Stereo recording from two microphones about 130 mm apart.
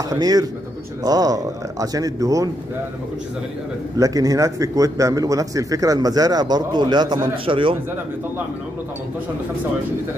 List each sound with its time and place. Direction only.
0.1 s a man's voice: 30° right (ahead or behind)
4.0 s a man's voice: 25° right (ahead or behind)